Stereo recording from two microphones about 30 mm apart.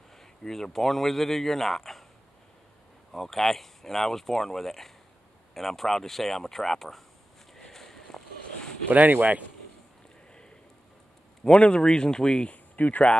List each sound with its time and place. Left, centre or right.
0.1 s speech: centre
3.1 s speech: centre
7.7 s a sound: centre
8.8 s speech: right
11.4 s speech: left
12.4 s speech: left